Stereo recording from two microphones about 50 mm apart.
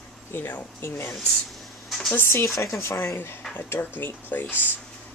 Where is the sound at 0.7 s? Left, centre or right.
Left.